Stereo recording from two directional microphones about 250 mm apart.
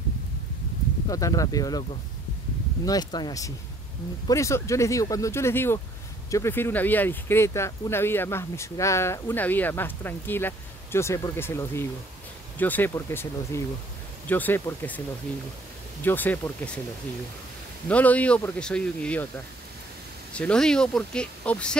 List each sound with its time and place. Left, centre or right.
1.0 s speech: centre
17.8 s speech: centre
20.3 s speech: centre